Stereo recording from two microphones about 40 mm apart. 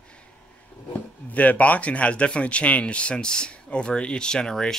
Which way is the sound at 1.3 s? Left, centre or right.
Left.